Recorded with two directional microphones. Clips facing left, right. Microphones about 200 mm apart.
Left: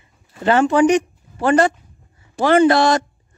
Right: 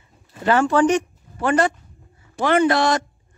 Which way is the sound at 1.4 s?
35° left (ahead or behind).